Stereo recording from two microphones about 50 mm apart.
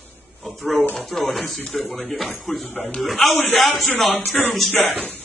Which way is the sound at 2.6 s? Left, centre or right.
Left.